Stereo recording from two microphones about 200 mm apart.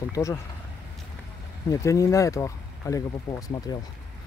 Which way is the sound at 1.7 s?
15° left (ahead or behind).